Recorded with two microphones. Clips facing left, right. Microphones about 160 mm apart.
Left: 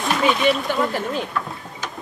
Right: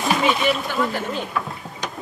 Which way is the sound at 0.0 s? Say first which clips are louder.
Left 1 dB; 5° right (ahead or behind).